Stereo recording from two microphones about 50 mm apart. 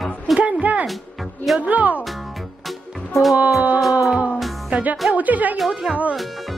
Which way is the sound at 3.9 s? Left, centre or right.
Right.